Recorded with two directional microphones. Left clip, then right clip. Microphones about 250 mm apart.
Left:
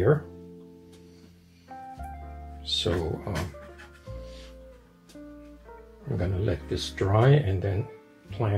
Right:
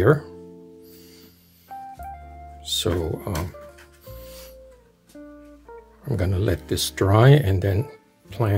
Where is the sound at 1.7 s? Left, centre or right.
Centre.